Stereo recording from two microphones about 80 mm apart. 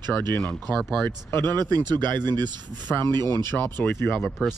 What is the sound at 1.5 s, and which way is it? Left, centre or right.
Speech, right.